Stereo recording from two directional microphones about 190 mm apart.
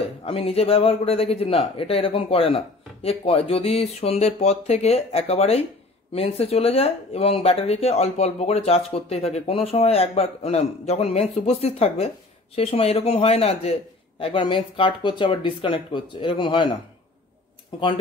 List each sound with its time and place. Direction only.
0.2 s speech: 30° left (ahead or behind)